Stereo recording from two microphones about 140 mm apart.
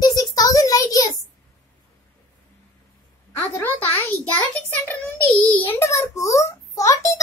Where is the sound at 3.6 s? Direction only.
15° left (ahead or behind).